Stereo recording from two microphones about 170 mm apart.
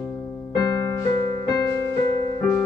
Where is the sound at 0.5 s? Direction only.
20° left (ahead or behind).